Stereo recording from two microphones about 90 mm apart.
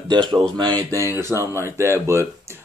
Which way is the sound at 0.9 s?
30° right (ahead or behind).